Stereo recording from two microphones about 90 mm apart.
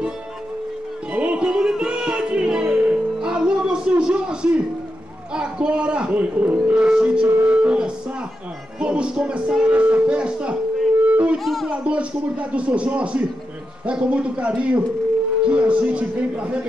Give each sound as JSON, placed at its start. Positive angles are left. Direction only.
{"t": 1.1, "sound": "music", "side_deg": -15}
{"t": 5.3, "sound": "a man's voice", "side_deg": -10}
{"t": 7.4, "sound": "music", "side_deg": -15}
{"t": 8.7, "sound": "speech", "side_deg": -10}
{"t": 11.1, "sound": "music", "side_deg": -15}
{"t": 11.3, "sound": "speech", "side_deg": 0}
{"t": 11.7, "sound": "speech", "side_deg": -15}